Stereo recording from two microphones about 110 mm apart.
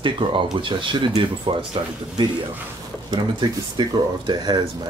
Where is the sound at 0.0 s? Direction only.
50° right (ahead or behind).